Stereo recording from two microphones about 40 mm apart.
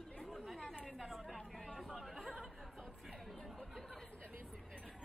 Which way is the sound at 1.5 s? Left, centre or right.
Centre.